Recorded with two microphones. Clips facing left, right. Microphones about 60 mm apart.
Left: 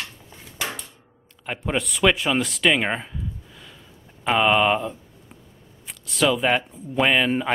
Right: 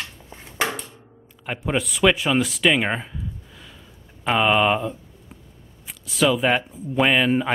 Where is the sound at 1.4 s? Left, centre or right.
Centre.